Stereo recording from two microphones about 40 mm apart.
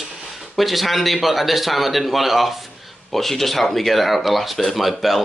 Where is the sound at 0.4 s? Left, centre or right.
Centre.